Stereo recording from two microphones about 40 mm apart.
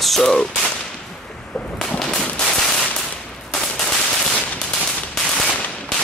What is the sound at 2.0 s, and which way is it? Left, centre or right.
Gunshot, centre.